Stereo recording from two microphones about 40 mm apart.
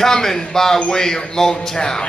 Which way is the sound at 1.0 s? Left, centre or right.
Centre.